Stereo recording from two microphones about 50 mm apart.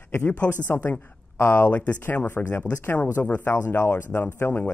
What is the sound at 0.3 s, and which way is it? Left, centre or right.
Speech, left.